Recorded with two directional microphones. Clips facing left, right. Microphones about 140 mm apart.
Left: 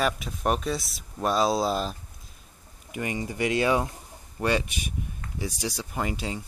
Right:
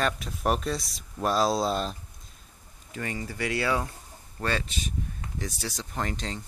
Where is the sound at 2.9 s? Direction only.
15° left (ahead or behind).